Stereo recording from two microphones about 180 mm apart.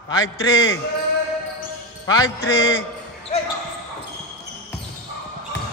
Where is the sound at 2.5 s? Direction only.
90° left.